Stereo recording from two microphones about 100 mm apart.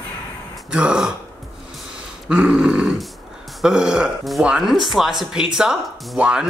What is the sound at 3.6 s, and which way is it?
Speech, 5° right (ahead or behind).